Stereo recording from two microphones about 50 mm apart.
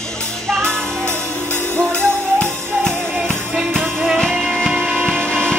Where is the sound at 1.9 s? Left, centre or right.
Right.